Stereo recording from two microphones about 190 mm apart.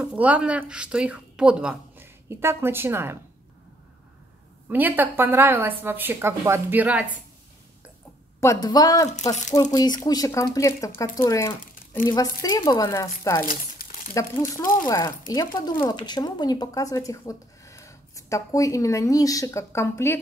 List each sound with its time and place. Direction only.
0.0 s a woman's voice: 5° right (ahead or behind)
4.6 s speech: 10° right (ahead or behind)
8.4 s speech: 15° left (ahead or behind)